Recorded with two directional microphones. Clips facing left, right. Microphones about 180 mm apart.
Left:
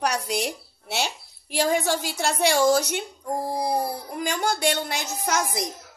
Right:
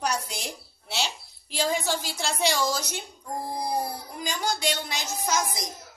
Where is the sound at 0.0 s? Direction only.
70° left (ahead or behind).